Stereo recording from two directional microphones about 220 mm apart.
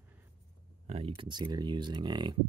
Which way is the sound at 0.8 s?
25° right (ahead or behind).